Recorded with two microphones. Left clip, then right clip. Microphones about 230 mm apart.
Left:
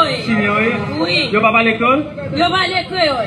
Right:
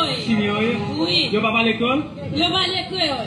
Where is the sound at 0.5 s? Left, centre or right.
Left.